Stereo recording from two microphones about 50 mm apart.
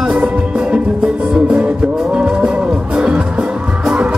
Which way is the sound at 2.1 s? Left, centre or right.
Centre.